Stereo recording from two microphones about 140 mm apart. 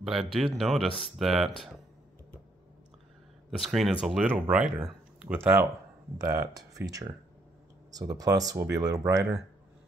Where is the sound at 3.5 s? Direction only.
Centre (ahead or behind); by 9.2 s 25° right (ahead or behind).